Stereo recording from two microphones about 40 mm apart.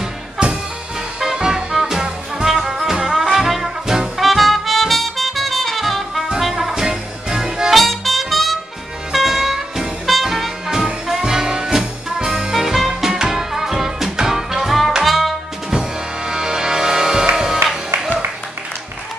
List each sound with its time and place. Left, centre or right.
0.4 s music: right
4.2 s music: centre
6.7 s music: centre
7.7 s music: centre
15.7 s music: centre